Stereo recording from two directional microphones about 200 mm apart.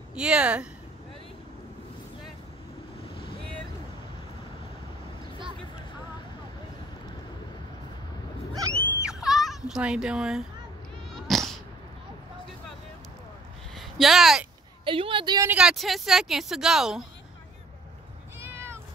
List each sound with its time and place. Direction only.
0.1 s a woman's voice: 5° right (ahead or behind)
3.2 s boat: 25° left (ahead or behind)
8.7 s a sound: 10° left (ahead or behind)
9.0 s fowl: centre (ahead or behind)
11.1 s cat: centre (ahead or behind)
13.7 s speech: centre (ahead or behind)
14.9 s a woman's voice: 25° right (ahead or behind)
15.5 s a woman's voice: centre (ahead or behind)
18.5 s vehicle: 10° right (ahead or behind)